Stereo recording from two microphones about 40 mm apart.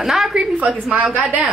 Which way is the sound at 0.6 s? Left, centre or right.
Right.